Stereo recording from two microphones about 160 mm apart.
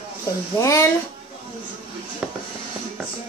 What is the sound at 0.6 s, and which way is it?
Speech, 20° left (ahead or behind).